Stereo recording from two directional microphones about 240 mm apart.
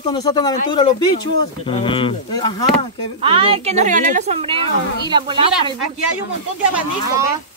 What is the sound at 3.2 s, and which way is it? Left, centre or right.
Speech, right.